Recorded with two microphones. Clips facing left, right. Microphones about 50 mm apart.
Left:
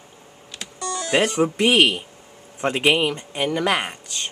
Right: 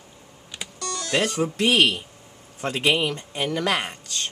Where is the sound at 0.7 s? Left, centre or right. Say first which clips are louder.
Left 4 dB; left.